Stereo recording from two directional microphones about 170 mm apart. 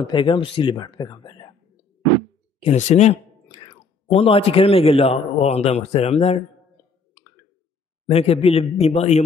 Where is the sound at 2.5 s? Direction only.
40° left (ahead or behind).